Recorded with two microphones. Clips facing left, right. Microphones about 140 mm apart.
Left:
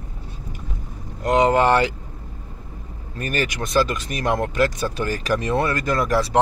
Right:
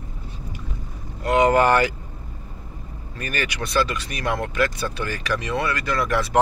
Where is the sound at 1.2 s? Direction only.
35° left (ahead or behind).